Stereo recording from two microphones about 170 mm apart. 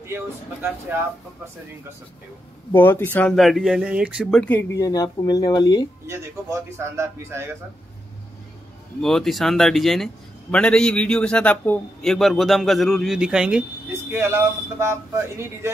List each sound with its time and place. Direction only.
0.0 s speech: 15° right (ahead or behind)
2.7 s a man's voice: 15° left (ahead or behind); by 4.4 s 5° right (ahead or behind)
4.4 s speech: 10° left (ahead or behind)
6.8 s speech: 15° right (ahead or behind)
9.0 s a man's voice: centre (ahead or behind); by 15.0 s 15° right (ahead or behind)